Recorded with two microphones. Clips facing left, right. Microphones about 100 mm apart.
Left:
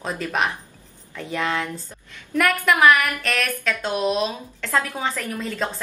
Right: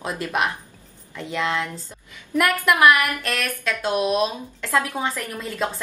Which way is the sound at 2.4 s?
5° right (ahead or behind).